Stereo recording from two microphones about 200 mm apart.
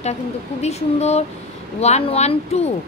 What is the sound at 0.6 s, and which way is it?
A woman's voice, 35° left (ahead or behind).